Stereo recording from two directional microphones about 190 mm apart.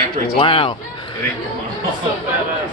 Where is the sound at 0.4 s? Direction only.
30° left (ahead or behind).